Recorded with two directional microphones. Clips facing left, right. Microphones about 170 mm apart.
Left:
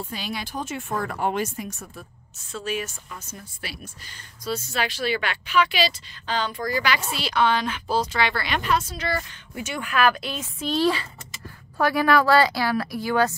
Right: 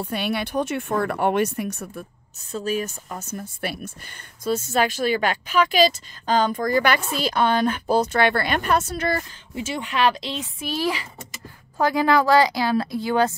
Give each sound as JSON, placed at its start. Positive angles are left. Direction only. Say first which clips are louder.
{"t": 0.1, "sound": "speech", "louder": "right 7 dB", "side_deg": -60}
{"t": 2.6, "sound": "speech", "louder": "right 4 dB", "side_deg": -40}
{"t": 9.6, "sound": "a woman's voice", "louder": "right 1 dB", "side_deg": -25}
{"t": 10.6, "sound": "a woman's voice", "louder": "left 4 dB", "side_deg": -10}